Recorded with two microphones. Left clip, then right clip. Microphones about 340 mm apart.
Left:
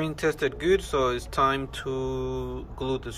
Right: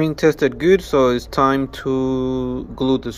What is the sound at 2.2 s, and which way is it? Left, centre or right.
Mantra, right.